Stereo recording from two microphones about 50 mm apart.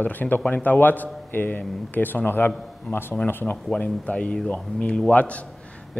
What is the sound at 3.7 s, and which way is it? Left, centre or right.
Speech, left.